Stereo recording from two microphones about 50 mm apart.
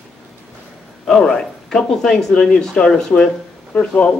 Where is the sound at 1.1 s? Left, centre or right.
Centre.